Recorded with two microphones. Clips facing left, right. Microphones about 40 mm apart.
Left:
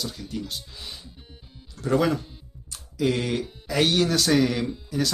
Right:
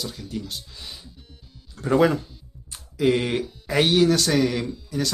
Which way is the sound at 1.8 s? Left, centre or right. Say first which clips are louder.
Right 3 dB; right.